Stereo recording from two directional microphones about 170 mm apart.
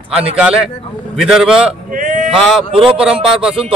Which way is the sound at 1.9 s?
50° right (ahead or behind).